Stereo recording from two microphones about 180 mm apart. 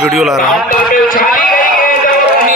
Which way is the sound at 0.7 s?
50° left (ahead or behind).